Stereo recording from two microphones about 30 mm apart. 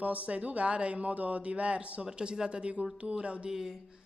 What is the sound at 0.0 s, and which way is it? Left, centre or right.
Speech, right.